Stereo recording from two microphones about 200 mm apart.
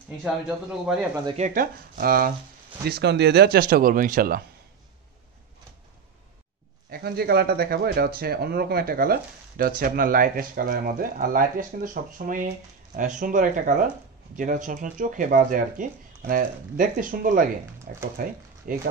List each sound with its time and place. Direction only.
0.2 s speech: 5° right (ahead or behind)
1.2 s speech: 30° right (ahead or behind)
1.5 s speech: 45° right (ahead or behind)
6.9 s speech: 50° right (ahead or behind)